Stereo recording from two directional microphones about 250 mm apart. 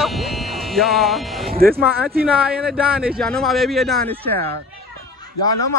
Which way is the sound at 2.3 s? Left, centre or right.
Centre.